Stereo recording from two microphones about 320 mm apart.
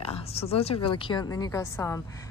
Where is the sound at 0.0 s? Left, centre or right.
Centre.